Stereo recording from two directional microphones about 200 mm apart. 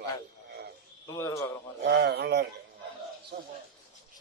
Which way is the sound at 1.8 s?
55° right (ahead or behind).